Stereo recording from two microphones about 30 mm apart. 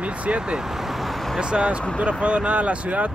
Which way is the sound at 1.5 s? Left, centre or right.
Right.